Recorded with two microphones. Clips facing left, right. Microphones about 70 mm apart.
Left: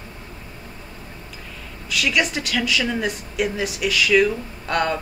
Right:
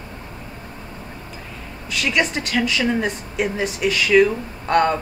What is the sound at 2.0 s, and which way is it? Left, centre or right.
Speech, right.